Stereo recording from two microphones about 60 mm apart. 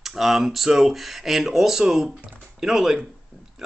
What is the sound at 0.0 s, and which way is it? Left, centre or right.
Speech, centre.